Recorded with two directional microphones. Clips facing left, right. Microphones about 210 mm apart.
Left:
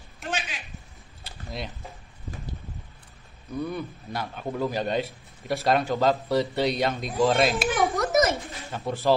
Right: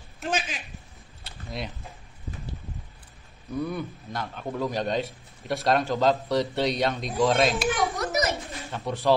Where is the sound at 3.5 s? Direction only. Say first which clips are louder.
Right 1 dB; centre (ahead or behind).